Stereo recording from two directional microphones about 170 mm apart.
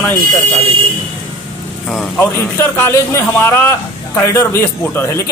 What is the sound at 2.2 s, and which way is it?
A man's voice, 15° left (ahead or behind).